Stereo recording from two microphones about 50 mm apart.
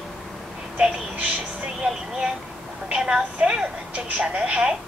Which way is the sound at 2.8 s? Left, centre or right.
Centre.